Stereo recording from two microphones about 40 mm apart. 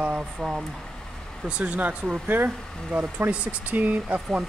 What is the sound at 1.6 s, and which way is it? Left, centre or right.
Speech, right.